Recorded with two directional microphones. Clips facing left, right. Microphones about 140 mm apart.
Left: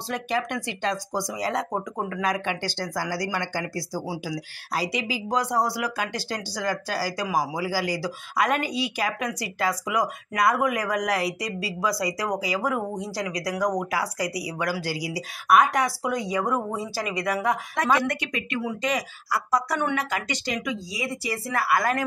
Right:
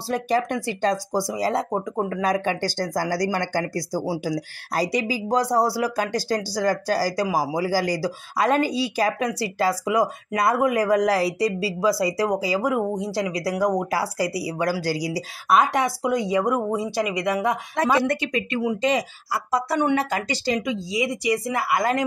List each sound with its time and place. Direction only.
0.1 s speech: 35° right (ahead or behind)